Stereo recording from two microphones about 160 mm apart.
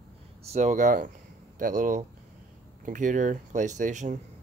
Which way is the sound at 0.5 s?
45° right (ahead or behind).